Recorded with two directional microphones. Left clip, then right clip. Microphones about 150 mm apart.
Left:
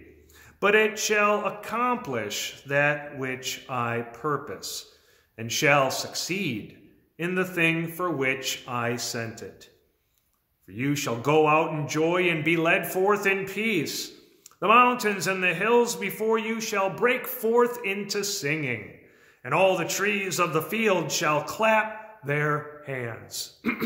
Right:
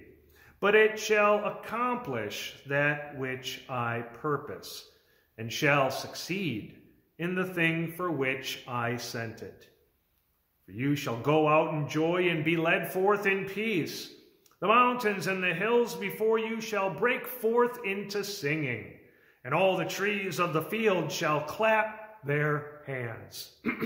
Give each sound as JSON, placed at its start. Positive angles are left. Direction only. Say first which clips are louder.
{"t": 0.6, "sound": "a man's voice", "louder": "left 2 dB", "side_deg": 25}
{"t": 10.8, "sound": "a man's voice", "louder": "left 3 dB", "side_deg": 25}